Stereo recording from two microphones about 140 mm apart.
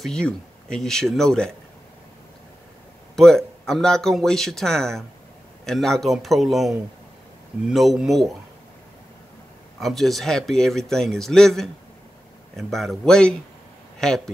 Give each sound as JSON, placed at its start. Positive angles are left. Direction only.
{"t": 0.0, "sound": "a man's voice", "side_deg": 5}
{"t": 3.2, "sound": "a man's voice", "side_deg": 5}
{"t": 9.8, "sound": "a man's voice", "side_deg": 0}